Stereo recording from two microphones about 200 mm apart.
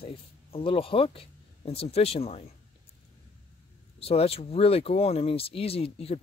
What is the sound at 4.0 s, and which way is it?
Speech, 30° left (ahead or behind).